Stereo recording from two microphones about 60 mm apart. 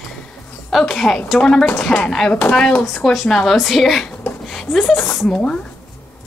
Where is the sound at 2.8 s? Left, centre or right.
Centre.